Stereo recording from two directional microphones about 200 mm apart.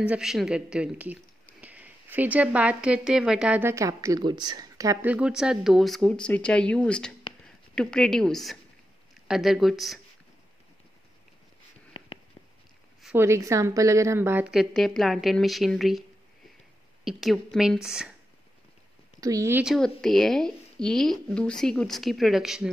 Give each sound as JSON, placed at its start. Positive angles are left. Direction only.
{"t": 0.0, "sound": "a woman's voice", "side_deg": -5}
{"t": 11.9, "sound": "a sound", "side_deg": 25}
{"t": 13.0, "sound": "a woman's voice", "side_deg": -10}
{"t": 17.0, "sound": "a woman's voice", "side_deg": 0}
{"t": 19.1, "sound": "speech", "side_deg": -15}
{"t": 19.6, "sound": "a woman's voice", "side_deg": 0}